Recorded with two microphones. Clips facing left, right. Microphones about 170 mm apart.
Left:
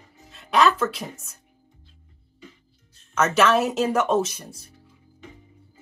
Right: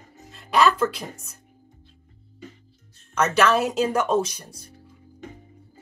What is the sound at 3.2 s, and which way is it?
Speech, centre (ahead or behind).